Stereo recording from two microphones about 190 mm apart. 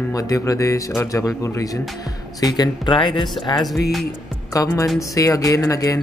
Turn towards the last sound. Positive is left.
turn(degrees=15)  # may be behind; listen again after turning